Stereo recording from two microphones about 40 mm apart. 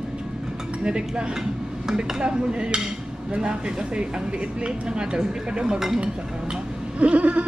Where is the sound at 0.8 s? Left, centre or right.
Right.